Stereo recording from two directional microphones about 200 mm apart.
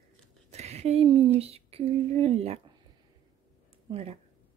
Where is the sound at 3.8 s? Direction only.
30° right (ahead or behind).